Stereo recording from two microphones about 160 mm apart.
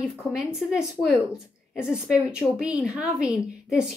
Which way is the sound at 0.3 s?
5° right (ahead or behind).